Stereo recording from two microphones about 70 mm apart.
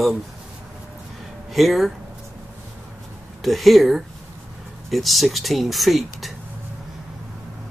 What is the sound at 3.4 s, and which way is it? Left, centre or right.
Speech, centre.